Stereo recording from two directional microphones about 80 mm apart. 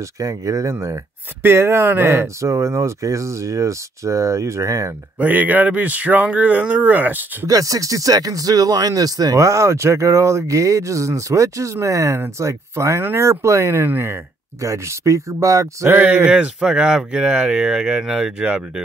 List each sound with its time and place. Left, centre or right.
0.2 s speech: right
5.2 s speech: right
7.4 s speech: right
14.6 s speech: right
15.9 s speech: centre